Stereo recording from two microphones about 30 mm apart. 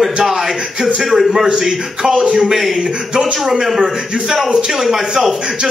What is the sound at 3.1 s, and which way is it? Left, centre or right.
Speech, right.